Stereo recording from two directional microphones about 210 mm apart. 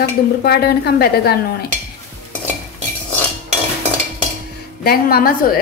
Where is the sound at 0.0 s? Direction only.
50° left (ahead or behind).